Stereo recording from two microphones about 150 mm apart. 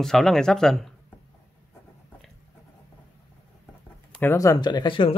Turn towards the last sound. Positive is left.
turn(degrees=35)  # may be behind; listen again after turning